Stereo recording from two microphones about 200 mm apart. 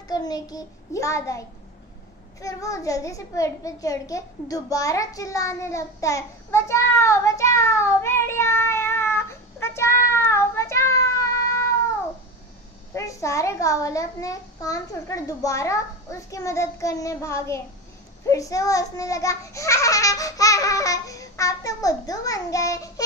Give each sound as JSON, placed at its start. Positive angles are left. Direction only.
{"t": 0.1, "sound": "a child's voice", "side_deg": 20}
{"t": 2.4, "sound": "a child's voice", "side_deg": 15}
{"t": 12.9, "sound": "a child's voice", "side_deg": 15}